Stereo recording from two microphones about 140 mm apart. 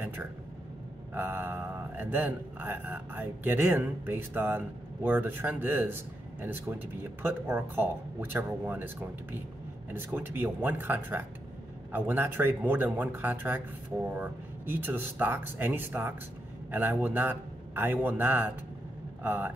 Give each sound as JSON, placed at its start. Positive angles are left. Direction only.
{"t": 0.0, "sound": "speech", "side_deg": -15}